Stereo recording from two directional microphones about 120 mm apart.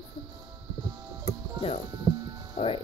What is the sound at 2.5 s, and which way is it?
Speech, 50° left (ahead or behind).